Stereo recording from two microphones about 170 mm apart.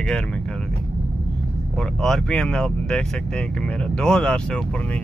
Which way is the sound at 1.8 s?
5° left (ahead or behind).